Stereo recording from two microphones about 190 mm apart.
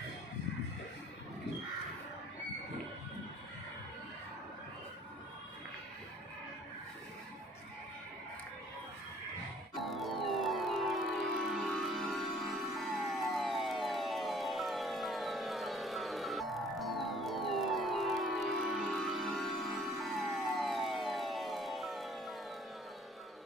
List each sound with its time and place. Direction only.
9.8 s music: centre (ahead or behind)